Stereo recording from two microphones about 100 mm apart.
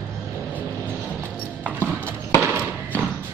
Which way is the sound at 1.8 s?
15° left (ahead or behind).